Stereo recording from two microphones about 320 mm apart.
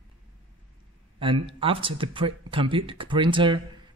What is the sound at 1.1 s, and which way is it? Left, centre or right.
Speech, centre.